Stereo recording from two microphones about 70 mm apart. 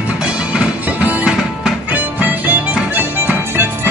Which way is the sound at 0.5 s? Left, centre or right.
Centre.